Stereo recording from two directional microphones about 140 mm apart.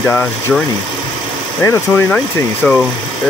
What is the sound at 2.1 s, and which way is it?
Speech, 5° left (ahead or behind).